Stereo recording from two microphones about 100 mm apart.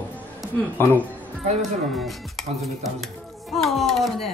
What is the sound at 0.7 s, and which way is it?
Speech, 20° left (ahead or behind).